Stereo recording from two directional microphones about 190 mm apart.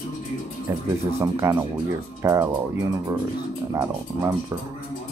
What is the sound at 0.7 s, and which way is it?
Speech, 15° right (ahead or behind).